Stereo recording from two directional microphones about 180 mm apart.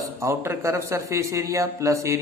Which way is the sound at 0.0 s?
15° right (ahead or behind).